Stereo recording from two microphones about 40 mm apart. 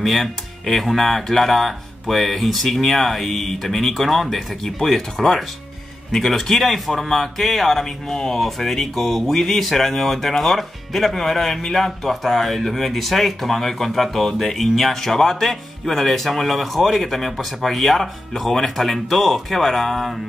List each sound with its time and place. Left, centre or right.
0.0 s speech: centre